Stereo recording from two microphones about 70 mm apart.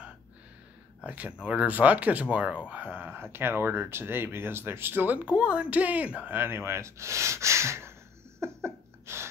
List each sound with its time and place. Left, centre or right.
1.0 s speech: right
6.3 s speech: right
8.4 s a sound: right